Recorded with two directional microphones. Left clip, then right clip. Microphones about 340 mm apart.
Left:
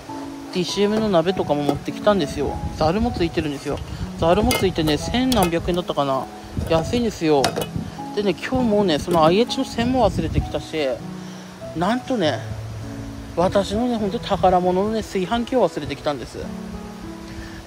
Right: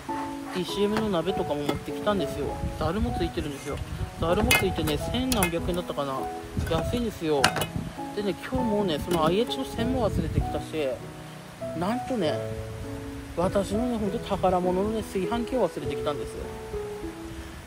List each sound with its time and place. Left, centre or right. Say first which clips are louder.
0.6 s speech: left 7 dB; left
13.4 s speech: left 7 dB; left